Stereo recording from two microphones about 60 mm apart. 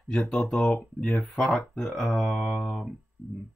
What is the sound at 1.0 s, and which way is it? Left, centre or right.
Speech, left.